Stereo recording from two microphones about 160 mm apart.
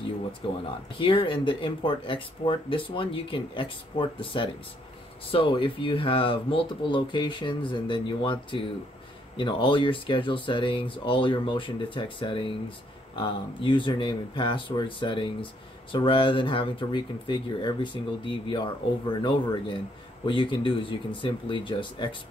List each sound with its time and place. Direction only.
0.4 s speech: 30° left (ahead or behind)